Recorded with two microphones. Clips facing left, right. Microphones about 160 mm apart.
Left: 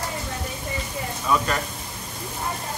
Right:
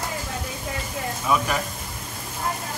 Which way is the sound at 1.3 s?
15° right (ahead or behind).